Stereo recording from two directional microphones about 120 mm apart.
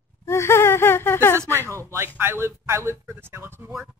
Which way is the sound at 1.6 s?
25° right (ahead or behind).